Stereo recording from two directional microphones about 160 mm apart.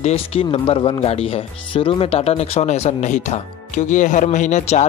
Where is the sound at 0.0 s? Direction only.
40° left (ahead or behind).